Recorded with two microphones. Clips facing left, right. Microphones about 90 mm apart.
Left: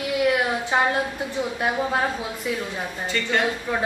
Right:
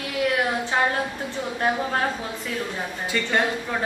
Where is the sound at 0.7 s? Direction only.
15° left (ahead or behind).